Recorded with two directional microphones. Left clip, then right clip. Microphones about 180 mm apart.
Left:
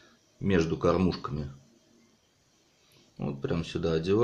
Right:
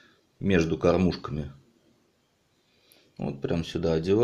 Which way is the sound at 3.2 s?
25° right (ahead or behind).